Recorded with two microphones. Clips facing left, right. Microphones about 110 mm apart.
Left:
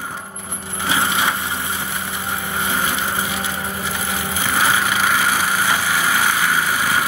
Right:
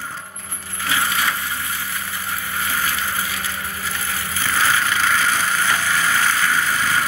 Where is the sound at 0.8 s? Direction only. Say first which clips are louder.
Left 2 dB; 20° left (ahead or behind).